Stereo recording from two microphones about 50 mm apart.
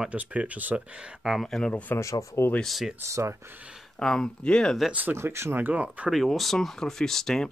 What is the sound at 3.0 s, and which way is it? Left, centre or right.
Speech, right.